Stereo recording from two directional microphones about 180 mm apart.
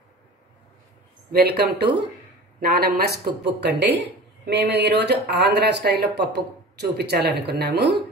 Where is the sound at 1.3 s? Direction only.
65° right (ahead or behind).